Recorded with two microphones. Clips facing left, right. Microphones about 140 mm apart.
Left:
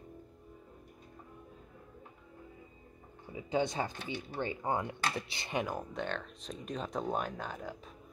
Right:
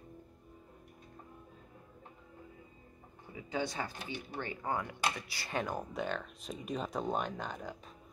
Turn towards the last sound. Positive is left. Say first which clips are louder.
# even
turn(degrees=0)  # may be behind; listen again after turning